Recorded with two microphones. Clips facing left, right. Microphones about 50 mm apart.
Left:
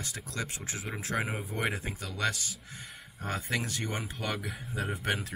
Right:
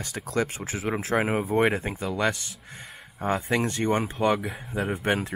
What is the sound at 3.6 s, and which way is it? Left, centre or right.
Speech, right.